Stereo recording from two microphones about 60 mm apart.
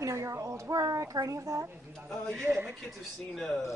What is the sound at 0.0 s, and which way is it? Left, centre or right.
A woman's voice, right.